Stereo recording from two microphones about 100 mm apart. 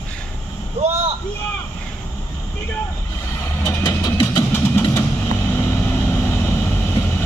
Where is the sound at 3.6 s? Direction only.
40° left (ahead or behind).